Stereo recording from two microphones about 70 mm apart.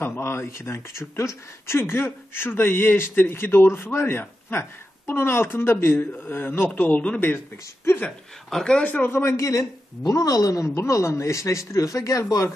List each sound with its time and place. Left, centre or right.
0.0 s speech: left
7.2 s speech: left
8.5 s speech: centre
8.8 s speech: left
9.1 s a woman's voice: left